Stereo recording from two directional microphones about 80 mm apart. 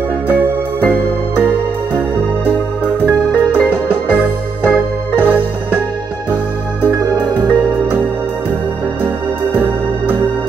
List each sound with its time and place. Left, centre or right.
0.3 s music: right
3.1 s music: right
7.3 s music: right